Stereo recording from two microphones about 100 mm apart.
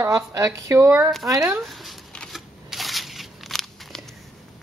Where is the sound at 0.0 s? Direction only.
30° right (ahead or behind).